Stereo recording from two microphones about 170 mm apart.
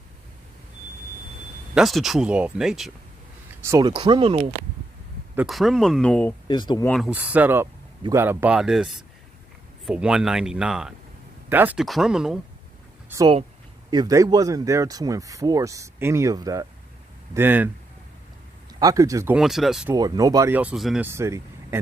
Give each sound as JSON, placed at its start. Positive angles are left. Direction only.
{"t": 1.8, "sound": "speech", "side_deg": 0}
{"t": 3.6, "sound": "speech", "side_deg": -20}
{"t": 5.5, "sound": "speech", "side_deg": 0}
{"t": 6.4, "sound": "speech", "side_deg": 25}
{"t": 7.0, "sound": "speech", "side_deg": -10}
{"t": 13.8, "sound": "speech", "side_deg": -25}
{"t": 18.8, "sound": "speech", "side_deg": -20}
{"t": 19.3, "sound": "speech", "side_deg": 0}
{"t": 19.9, "sound": "speech", "side_deg": -20}
{"t": 20.5, "sound": "speech", "side_deg": -5}
{"t": 21.0, "sound": "speech", "side_deg": -15}